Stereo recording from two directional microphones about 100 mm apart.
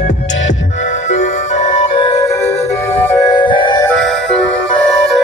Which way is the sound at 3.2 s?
50° left (ahead or behind).